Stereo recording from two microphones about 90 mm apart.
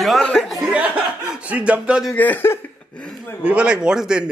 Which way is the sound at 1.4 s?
15° right (ahead or behind).